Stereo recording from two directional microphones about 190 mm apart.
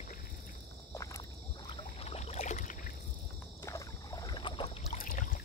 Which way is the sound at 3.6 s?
15° left (ahead or behind).